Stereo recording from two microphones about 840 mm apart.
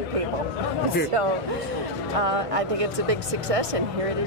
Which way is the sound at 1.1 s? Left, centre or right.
Right.